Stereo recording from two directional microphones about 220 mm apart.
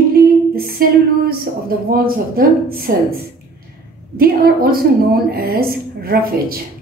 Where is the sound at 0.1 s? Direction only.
40° right (ahead or behind).